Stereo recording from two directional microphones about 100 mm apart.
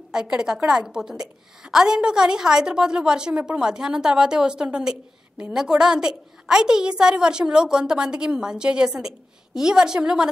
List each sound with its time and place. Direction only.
0.1 s a woman's voice: 10° right (ahead or behind)